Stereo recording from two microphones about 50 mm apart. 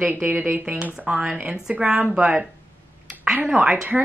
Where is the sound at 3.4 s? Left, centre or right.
Right.